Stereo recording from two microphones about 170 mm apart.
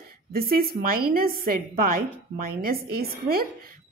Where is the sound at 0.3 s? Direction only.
60° right (ahead or behind).